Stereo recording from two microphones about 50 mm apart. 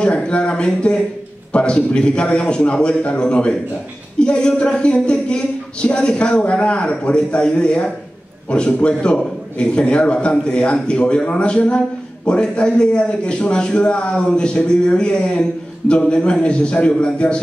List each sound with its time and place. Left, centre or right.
0.0 s speech: left